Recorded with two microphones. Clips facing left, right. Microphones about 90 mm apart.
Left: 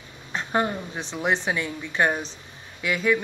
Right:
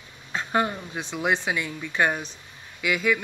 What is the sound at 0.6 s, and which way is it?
Speech, centre (ahead or behind).